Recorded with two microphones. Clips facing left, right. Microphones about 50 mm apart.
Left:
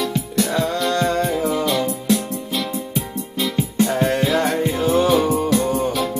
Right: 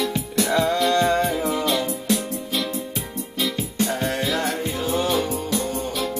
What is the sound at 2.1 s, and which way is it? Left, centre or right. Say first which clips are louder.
Music: left 3 dB; centre.